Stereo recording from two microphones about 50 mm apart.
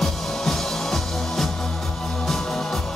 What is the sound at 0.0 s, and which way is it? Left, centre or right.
Music, centre.